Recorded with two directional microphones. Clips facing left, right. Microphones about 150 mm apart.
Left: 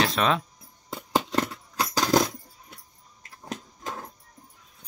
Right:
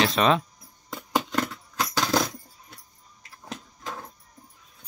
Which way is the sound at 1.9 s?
10° left (ahead or behind).